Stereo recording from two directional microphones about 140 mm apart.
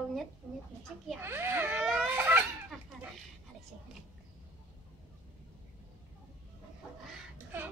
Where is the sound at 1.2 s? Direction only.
15° right (ahead or behind).